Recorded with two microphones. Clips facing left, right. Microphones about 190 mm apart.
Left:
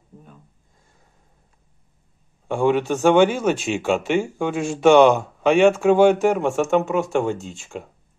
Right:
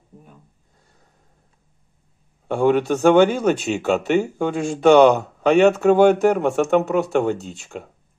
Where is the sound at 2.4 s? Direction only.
50° right (ahead or behind).